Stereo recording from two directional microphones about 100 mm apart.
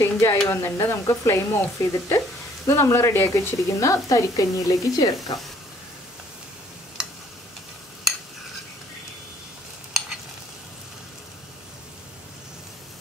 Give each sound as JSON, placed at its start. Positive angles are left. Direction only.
{"t": 0.0, "sound": "stir", "side_deg": 25}
{"t": 0.5, "sound": "speech", "side_deg": 30}
{"t": 7.0, "sound": "tick-tock", "side_deg": -5}